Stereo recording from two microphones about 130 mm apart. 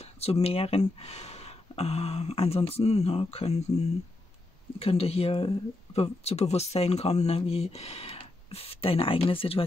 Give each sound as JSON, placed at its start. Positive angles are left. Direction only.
{"t": 0.0, "sound": "speech", "side_deg": 50}
{"t": 4.7, "sound": "speech", "side_deg": 50}